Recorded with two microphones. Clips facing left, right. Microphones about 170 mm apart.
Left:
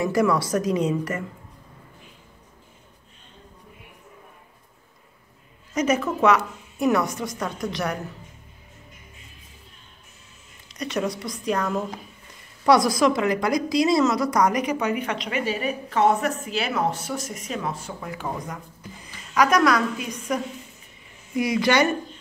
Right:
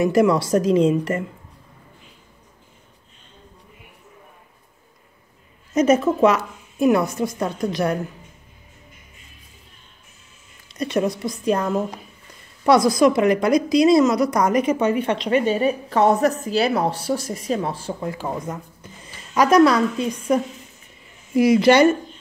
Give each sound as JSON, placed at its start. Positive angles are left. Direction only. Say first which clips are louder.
{"t": 0.0, "sound": "a woman's voice", "louder": "right 4 dB", "side_deg": -25}
{"t": 5.7, "sound": "a woman's voice", "louder": "right 6 dB", "side_deg": -25}
{"t": 10.8, "sound": "a woman's voice", "louder": "right 5 dB", "side_deg": -25}
{"t": 21.4, "sound": "a woman's voice", "louder": "right 8 dB", "side_deg": -25}